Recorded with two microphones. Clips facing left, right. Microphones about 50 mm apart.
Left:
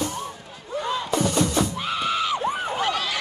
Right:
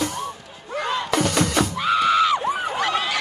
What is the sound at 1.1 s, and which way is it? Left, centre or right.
Music, right.